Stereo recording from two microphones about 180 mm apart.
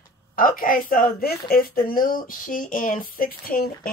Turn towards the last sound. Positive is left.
turn(degrees=55)  # may be behind; listen again after turning